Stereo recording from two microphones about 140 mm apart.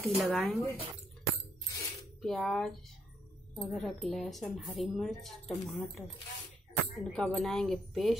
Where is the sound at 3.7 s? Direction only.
Centre (ahead or behind).